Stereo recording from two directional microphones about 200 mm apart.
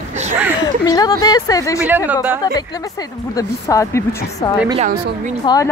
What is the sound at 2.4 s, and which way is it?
Speech, 20° left (ahead or behind).